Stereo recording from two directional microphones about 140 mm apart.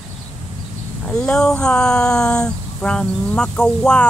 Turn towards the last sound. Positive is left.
turn(degrees=5)  # may be behind; listen again after turning